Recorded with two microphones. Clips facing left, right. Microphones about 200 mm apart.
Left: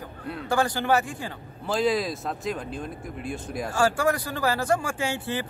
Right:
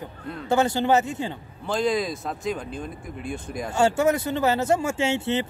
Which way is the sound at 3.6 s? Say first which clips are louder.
Right 3 dB; 25° right (ahead or behind).